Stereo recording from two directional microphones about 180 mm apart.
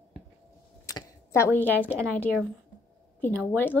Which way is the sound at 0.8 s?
15° left (ahead or behind).